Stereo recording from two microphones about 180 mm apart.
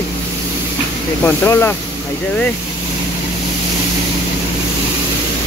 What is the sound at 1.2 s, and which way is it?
Speech, 10° left (ahead or behind).